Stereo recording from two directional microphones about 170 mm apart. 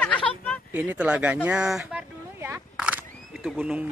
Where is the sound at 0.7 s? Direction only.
10° right (ahead or behind).